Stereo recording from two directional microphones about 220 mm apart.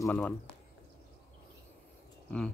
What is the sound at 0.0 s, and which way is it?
Speech, 5° left (ahead or behind).